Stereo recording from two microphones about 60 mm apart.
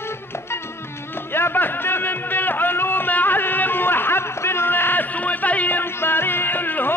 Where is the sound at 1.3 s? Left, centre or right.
Left.